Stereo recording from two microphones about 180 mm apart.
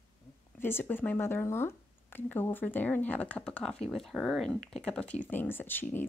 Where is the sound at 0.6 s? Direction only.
10° left (ahead or behind).